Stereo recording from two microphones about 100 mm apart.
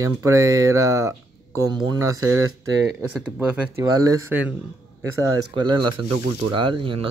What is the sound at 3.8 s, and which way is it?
Speech, 40° right (ahead or behind).